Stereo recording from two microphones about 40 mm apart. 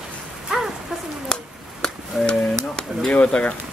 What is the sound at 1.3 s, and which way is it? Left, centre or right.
Speech, centre.